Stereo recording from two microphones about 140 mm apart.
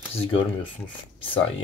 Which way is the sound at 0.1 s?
45° left (ahead or behind).